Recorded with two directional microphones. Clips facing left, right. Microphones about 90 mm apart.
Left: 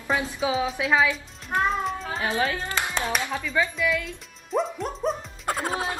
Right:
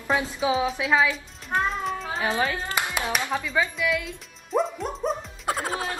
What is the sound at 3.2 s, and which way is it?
Speech, 20° right (ahead or behind).